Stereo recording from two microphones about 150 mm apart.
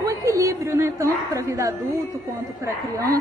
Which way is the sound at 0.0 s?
20° right (ahead or behind).